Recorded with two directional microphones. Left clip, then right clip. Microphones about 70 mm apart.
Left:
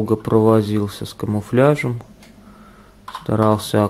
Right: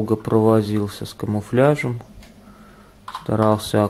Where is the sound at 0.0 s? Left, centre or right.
Centre.